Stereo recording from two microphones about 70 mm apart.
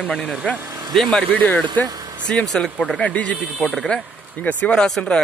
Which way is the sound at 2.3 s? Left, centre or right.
Centre.